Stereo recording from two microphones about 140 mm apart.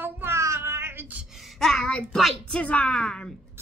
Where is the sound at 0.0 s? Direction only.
15° right (ahead or behind).